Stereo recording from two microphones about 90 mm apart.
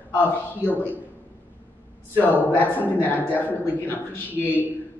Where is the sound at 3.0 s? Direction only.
20° left (ahead or behind).